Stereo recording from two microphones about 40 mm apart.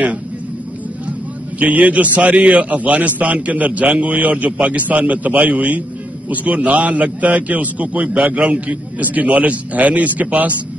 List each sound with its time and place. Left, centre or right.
1.6 s a man's voice: right